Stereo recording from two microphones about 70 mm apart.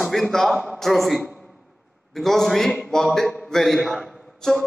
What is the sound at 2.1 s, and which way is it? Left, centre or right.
A man's voice, centre.